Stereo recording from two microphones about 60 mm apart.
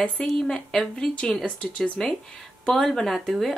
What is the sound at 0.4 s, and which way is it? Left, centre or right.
Speech, centre.